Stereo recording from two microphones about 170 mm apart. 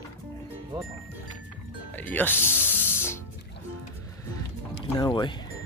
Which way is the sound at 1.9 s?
10° left (ahead or behind).